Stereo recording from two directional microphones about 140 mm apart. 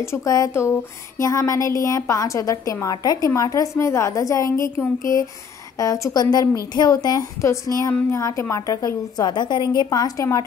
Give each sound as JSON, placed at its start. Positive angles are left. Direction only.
{"t": 0.1, "sound": "a woman's voice", "side_deg": 20}